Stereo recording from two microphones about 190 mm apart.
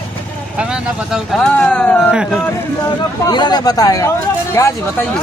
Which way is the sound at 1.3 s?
5° left (ahead or behind).